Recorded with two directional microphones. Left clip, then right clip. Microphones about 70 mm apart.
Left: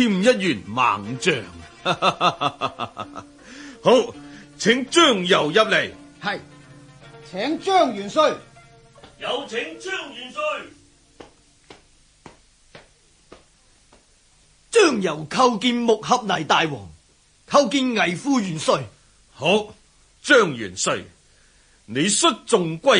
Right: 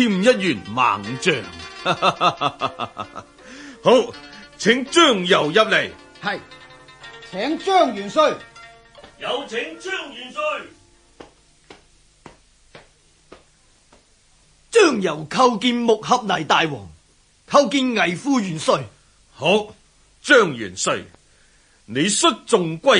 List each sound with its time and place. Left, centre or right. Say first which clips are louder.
0.0 s a man's voice: right 1 dB; left
11.1 s a sound: right 1 dB; left
14.7 s a man's voice: right 2 dB; left